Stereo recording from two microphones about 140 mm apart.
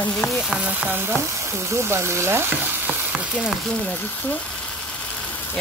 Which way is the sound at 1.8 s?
20° right (ahead or behind).